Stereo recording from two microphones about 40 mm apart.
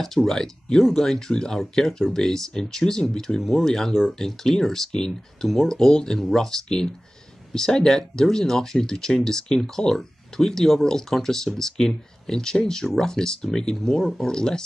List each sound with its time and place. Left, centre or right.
0.0 s speech: centre
3.3 s speech: centre